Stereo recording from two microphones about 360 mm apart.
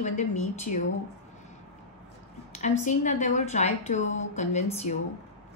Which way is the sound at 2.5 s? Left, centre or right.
Centre.